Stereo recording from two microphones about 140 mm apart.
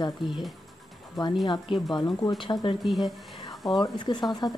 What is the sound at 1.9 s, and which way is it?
Speech, 30° left (ahead or behind).